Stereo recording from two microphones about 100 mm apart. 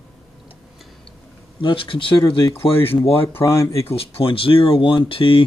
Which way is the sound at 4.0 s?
70° left (ahead or behind).